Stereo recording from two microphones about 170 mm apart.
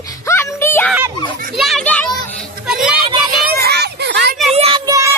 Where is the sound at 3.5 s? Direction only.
70° right (ahead or behind); by 4.3 s 85° right.